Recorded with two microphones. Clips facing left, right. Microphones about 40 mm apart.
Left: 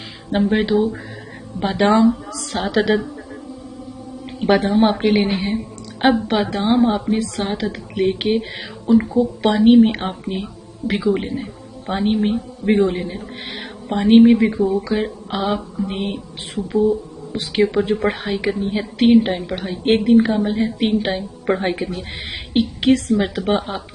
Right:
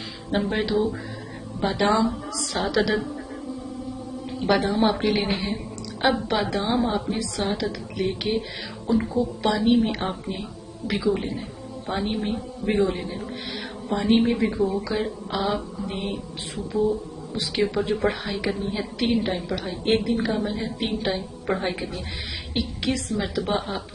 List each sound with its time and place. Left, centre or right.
0.3 s a woman's voice: left
4.5 s a woman's voice: left
11.3 s insect: left
12.0 s a woman's voice: left
14.5 s speech: centre
14.8 s a woman's voice: left